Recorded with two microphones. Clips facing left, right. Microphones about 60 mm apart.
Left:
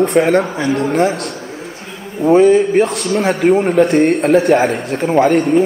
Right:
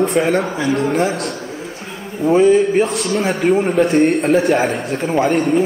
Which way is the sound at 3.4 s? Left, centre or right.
Centre.